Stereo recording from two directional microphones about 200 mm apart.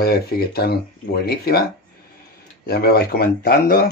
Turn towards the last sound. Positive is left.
turn(degrees=50)  # may be behind; listen again after turning